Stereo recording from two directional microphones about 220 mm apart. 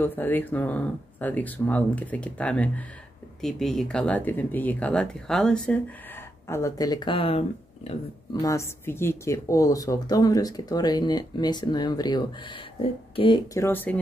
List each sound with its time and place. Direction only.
0.0 s speech: 10° left (ahead or behind)
6.4 s speech: 15° left (ahead or behind)
8.4 s speech: 15° left (ahead or behind)